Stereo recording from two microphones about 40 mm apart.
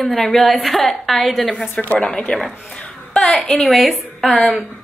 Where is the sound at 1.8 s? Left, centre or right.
Left.